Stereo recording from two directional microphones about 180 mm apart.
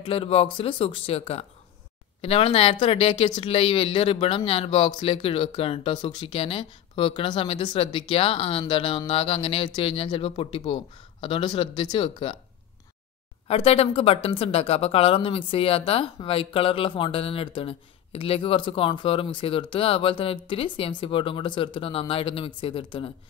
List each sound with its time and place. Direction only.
0.0 s speech: 30° left (ahead or behind)
13.5 s speech: 35° left (ahead or behind)